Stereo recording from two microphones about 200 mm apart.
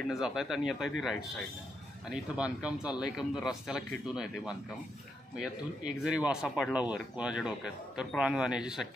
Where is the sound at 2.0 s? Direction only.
5° right (ahead or behind).